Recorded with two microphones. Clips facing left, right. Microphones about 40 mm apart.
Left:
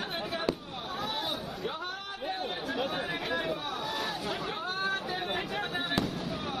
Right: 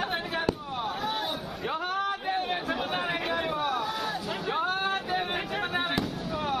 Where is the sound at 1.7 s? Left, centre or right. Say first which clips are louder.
Right 8 dB; right.